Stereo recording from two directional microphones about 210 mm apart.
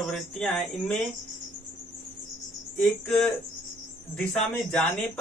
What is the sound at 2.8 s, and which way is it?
A man's voice, 5° left (ahead or behind).